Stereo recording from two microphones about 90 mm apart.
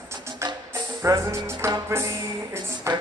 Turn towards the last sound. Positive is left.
turn(degrees=-30)  # may be behind; listen again after turning